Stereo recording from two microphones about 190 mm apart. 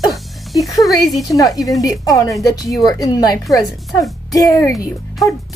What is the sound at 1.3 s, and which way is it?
A woman's voice, 20° left (ahead or behind).